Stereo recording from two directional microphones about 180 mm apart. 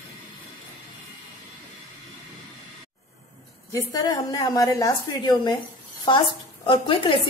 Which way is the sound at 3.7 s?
20° left (ahead or behind).